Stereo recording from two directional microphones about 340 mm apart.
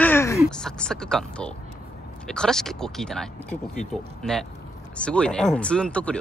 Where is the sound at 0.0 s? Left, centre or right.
Centre.